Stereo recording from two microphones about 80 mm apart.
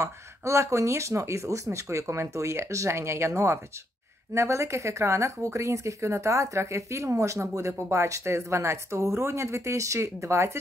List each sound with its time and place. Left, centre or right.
0.0 s speech: right